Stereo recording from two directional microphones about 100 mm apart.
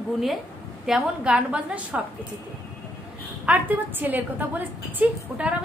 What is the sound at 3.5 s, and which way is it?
A woman's voice, 20° right (ahead or behind).